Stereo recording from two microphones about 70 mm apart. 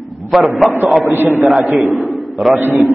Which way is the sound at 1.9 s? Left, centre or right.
Centre.